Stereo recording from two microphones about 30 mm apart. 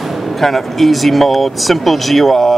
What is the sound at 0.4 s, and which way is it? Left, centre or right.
Speech, centre.